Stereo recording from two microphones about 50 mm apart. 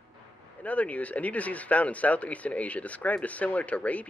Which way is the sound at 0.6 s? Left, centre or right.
Left.